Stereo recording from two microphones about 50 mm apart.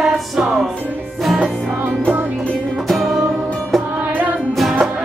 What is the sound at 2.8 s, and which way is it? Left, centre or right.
Music, centre.